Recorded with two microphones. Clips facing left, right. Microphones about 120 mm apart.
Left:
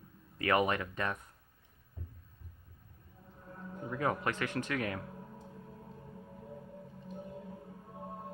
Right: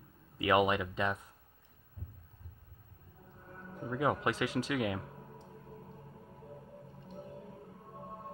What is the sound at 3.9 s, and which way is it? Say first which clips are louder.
Speech: right 2 dB; 15° right (ahead or behind).